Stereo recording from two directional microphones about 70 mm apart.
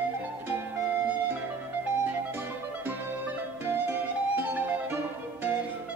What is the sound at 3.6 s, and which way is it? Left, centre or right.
Music, right.